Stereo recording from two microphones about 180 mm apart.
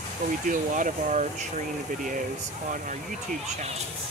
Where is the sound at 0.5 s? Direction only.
45° right (ahead or behind).